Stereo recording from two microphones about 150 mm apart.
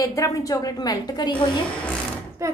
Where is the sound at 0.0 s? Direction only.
20° left (ahead or behind).